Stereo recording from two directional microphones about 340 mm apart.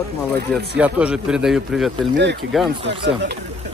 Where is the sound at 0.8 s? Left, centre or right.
Centre.